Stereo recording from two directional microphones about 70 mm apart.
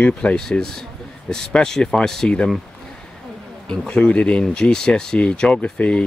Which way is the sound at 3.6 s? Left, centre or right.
Centre.